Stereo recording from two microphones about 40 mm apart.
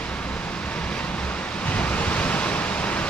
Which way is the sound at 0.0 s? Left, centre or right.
Left.